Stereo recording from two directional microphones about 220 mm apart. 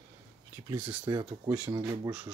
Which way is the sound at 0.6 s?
20° right (ahead or behind).